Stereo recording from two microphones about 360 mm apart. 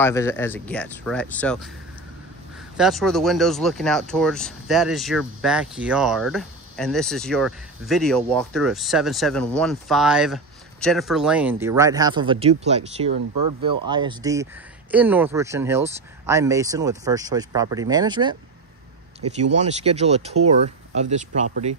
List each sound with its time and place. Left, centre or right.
0.0 s speech: centre
2.8 s speech: centre
13.3 s speech: right
13.8 s speech: centre
19.3 s speech: centre